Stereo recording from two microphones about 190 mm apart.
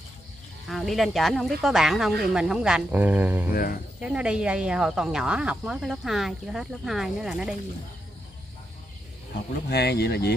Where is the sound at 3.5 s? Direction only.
50° left (ahead or behind).